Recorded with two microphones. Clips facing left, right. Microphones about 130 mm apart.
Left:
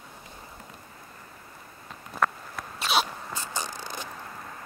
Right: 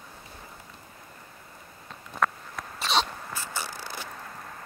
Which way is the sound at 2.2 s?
5° left (ahead or behind).